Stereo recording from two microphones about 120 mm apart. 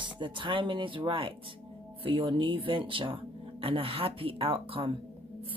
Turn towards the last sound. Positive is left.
turn(degrees=-50)  # may be behind; listen again after turning